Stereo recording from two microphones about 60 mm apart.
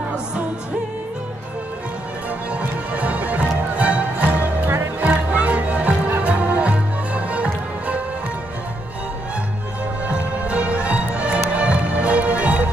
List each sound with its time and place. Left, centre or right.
2.5 s music: right
10.0 s music: right